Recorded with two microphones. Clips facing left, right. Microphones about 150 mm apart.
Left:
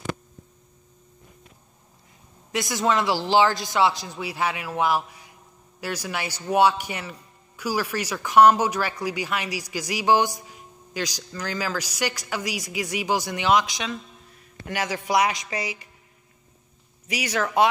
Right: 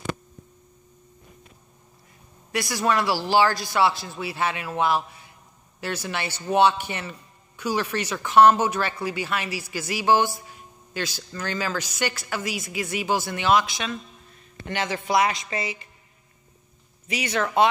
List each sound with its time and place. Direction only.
2.5 s speech: 20° left (ahead or behind)
17.1 s speech: 10° left (ahead or behind)